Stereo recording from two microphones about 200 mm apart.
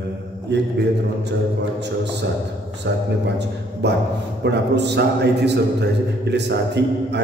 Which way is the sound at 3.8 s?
55° right (ahead or behind).